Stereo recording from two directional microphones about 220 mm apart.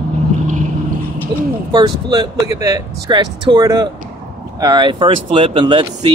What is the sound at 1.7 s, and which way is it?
Speech, 15° right (ahead or behind).